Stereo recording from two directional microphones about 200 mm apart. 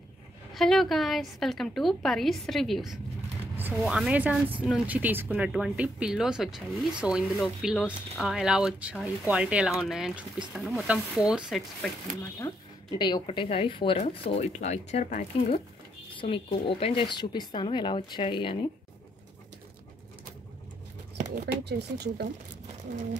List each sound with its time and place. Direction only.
0.6 s speech: centre (ahead or behind)
12.4 s speech: 20° left (ahead or behind); by 15.6 s 35° left (ahead or behind)
16.2 s speech: 25° left (ahead or behind)
21.6 s speech: 55° right (ahead or behind)